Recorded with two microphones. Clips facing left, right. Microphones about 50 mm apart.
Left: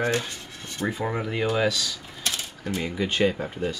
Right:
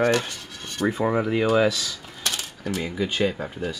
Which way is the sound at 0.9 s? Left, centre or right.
Centre.